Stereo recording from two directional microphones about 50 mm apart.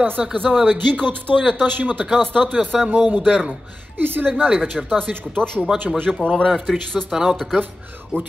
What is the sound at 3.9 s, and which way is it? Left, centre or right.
Speech, right.